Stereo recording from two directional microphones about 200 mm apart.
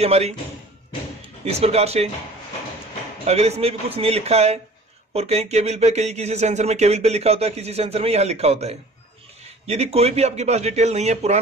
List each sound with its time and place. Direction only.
0.0 s speech: 30° right (ahead or behind)
1.4 s speech: 30° right (ahead or behind)
3.3 s speech: 30° right (ahead or behind)